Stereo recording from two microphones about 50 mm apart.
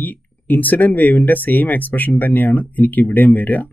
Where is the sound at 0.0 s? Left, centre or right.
Left.